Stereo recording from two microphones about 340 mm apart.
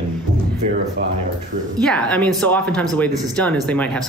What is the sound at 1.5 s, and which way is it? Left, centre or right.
Speech, right.